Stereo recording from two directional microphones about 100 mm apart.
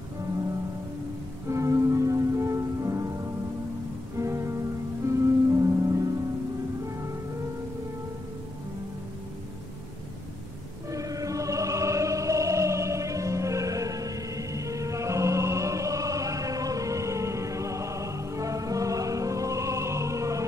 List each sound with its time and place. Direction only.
1.5 s music: 30° right (ahead or behind)
4.2 s music: 30° right (ahead or behind)
10.9 s music: 35° right (ahead or behind)